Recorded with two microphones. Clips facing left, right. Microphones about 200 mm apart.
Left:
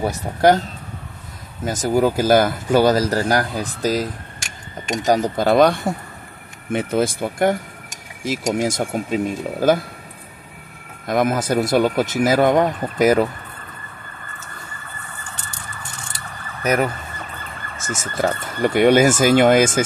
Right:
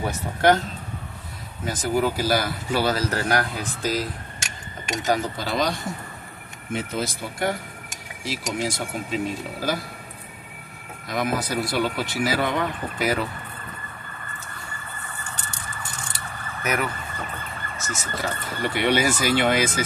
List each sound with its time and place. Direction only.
1.6 s speech: 45° left (ahead or behind)
11.1 s speech: 50° left (ahead or behind)
16.6 s speech: 40° left (ahead or behind)
17.8 s speech: 50° left (ahead or behind)